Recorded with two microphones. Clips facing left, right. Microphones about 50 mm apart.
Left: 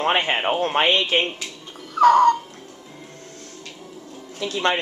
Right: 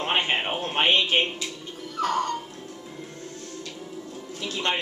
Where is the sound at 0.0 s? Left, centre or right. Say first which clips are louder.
Left 4 dB; left.